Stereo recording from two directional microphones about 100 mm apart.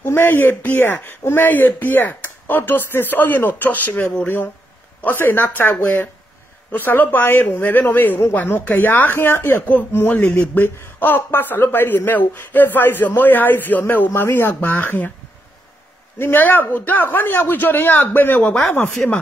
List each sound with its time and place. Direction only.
0.0 s a man's voice: 20° left (ahead or behind)
16.2 s a man's voice: 20° left (ahead or behind)